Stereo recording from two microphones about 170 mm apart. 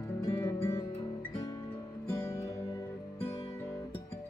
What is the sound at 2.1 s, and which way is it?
Music, 15° left (ahead or behind).